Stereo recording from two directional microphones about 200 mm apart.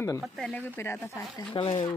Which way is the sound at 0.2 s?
5° left (ahead or behind).